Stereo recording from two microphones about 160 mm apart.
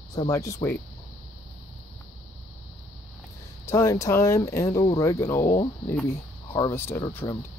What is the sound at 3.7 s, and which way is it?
Speech, 20° left (ahead or behind).